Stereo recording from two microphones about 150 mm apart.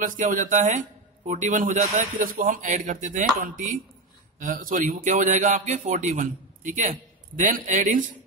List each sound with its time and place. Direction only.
0.0 s a man's voice: 65° right (ahead or behind)